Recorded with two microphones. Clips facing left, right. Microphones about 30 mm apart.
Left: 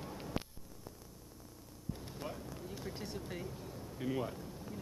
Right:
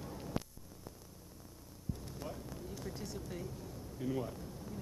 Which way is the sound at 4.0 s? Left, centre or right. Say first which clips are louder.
Left 1 dB; left.